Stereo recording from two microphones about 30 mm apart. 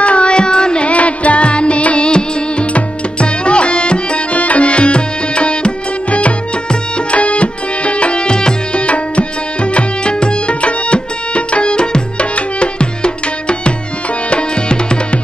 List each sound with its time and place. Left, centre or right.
0.0 s carnatic music: left
0.8 s music: left
2.0 s music: left
2.6 s tabla: left
4.3 s music: left
6.7 s music: left
7.2 s music: left
8.7 s tabla: left
14.3 s music: left